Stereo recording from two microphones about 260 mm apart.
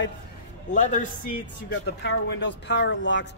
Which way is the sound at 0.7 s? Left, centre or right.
Left.